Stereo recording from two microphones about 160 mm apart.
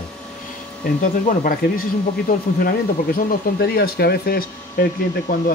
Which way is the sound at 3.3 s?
75° left (ahead or behind).